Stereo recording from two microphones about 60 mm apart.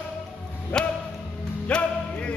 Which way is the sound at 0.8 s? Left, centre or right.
Centre.